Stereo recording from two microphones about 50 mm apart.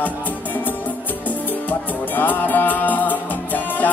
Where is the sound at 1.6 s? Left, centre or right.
Left.